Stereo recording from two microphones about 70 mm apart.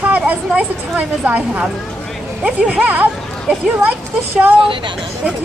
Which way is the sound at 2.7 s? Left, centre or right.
Right.